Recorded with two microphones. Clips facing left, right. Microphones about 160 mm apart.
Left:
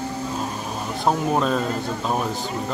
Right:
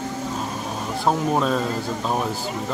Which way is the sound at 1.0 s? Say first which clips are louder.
Even; centre (ahead or behind).